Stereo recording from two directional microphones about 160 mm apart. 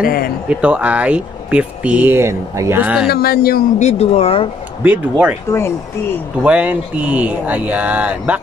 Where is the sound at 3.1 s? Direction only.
75° left (ahead or behind).